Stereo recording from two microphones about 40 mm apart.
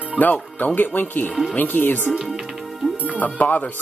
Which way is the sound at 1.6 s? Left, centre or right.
Left.